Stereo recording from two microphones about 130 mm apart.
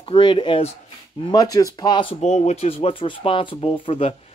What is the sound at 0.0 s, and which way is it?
Speech, 35° left (ahead or behind).